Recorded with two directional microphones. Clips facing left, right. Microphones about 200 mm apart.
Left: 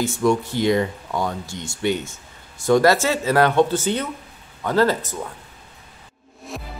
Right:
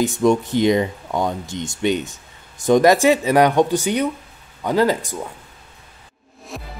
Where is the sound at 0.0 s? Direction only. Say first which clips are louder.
Right 3 dB; 20° right (ahead or behind).